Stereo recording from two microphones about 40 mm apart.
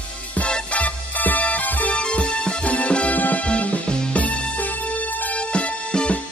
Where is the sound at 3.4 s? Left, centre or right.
Left.